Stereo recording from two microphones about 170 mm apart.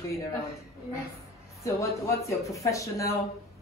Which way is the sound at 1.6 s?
20° left (ahead or behind).